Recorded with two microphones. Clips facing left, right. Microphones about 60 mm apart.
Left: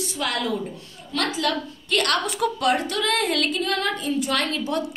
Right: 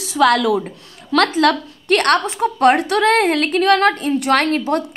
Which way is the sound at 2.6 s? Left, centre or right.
Right.